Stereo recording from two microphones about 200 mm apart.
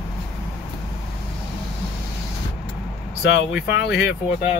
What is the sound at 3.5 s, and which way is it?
Speech, 5° right (ahead or behind).